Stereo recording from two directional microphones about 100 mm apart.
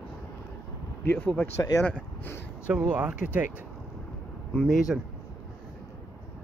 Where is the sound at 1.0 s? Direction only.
15° left (ahead or behind).